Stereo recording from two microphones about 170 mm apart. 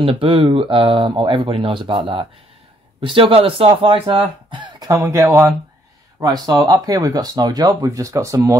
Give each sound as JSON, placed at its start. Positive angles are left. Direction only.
{"t": 0.0, "sound": "speech", "side_deg": -35}